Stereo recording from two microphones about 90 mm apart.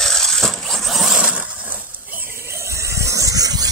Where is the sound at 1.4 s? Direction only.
20° right (ahead or behind).